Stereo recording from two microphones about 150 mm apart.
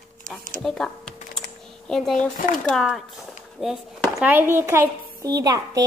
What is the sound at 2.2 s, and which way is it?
Speech, 60° left (ahead or behind).